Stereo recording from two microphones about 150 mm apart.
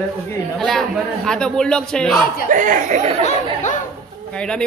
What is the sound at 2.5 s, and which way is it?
Speech, 60° right (ahead or behind).